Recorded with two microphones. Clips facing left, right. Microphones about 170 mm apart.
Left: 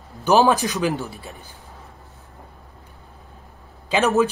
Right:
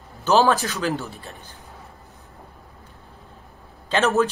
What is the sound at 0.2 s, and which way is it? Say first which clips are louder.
A man's voice: left 2 dB; 15° left (ahead or behind).